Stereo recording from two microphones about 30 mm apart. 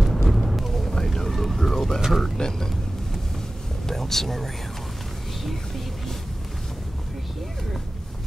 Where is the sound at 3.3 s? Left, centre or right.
Centre.